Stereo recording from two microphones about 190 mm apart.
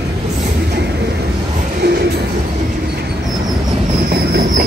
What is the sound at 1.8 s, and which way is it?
Music, 55° right (ahead or behind).